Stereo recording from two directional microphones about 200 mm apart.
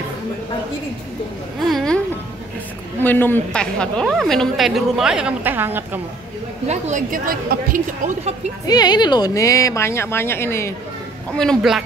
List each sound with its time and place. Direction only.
1.7 s a woman's voice: centre (ahead or behind)
3.0 s a woman's voice: 10° left (ahead or behind); by 5.9 s 10° right (ahead or behind)
6.7 s a woman's voice: 40° right (ahead or behind)
8.6 s speech: 20° left (ahead or behind)
11.3 s a woman's voice: centre (ahead or behind)